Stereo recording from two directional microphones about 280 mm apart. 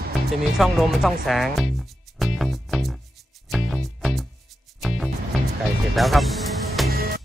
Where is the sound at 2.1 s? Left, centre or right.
Centre.